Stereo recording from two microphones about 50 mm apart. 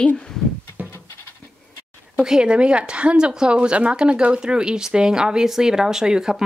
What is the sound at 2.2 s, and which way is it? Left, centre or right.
Speech, centre.